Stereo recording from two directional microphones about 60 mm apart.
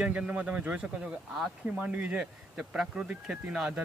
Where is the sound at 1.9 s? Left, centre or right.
Right.